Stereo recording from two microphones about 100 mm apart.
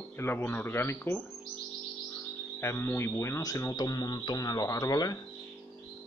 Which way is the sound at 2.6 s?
25° left (ahead or behind).